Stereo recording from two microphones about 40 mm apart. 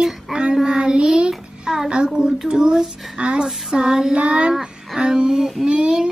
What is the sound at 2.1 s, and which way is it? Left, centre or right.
Speech, centre.